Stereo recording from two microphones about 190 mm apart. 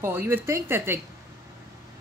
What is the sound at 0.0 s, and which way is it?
Speech, 10° right (ahead or behind).